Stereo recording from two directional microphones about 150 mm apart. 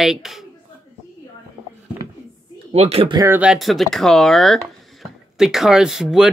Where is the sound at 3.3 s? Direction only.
5° right (ahead or behind).